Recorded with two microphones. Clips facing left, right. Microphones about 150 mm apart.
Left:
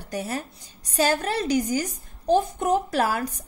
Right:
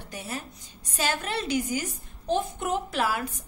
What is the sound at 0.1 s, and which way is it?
A woman's voice, 40° left (ahead or behind).